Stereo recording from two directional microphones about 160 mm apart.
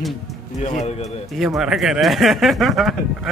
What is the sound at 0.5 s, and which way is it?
Speech, 45° left (ahead or behind).